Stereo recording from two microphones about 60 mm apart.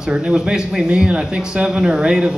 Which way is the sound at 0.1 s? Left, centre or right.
Centre.